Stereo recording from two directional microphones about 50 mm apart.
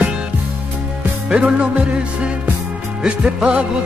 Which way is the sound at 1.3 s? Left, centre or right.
Centre.